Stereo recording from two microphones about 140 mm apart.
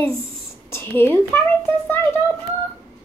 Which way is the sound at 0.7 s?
15° left (ahead or behind).